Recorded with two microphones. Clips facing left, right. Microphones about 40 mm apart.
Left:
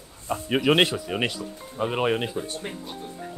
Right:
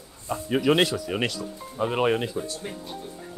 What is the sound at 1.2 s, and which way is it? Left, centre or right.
Speech, centre.